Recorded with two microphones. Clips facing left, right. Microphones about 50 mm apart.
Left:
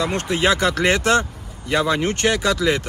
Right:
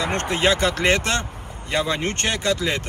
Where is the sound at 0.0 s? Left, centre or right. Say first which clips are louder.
Left 1 dB; right.